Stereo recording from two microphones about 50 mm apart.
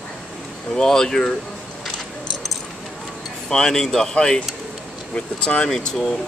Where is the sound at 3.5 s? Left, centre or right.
Centre.